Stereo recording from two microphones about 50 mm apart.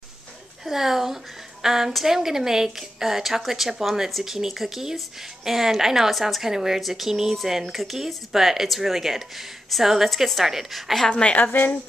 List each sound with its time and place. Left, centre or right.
0.7 s a woman's voice: centre
11.1 s a woman's voice: centre
11.3 s speech: left